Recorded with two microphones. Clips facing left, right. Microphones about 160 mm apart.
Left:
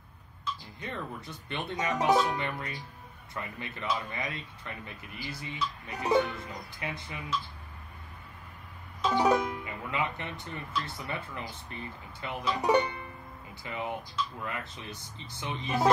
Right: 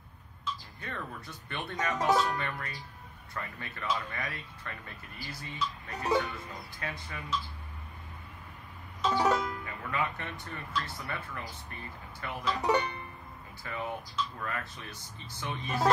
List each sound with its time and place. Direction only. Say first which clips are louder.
0.7 s speech: left 2 dB; 20° left (ahead or behind)
9.1 s music: left 3 dB; 15° left (ahead or behind)
10.7 s speech: left 1 dB; 20° left (ahead or behind)